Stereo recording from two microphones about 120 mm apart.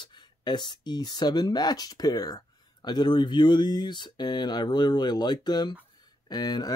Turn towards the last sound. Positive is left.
turn(degrees=35)  # may be behind; listen again after turning